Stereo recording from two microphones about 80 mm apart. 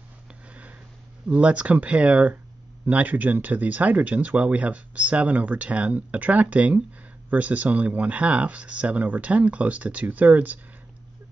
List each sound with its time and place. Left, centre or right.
1.3 s speech: centre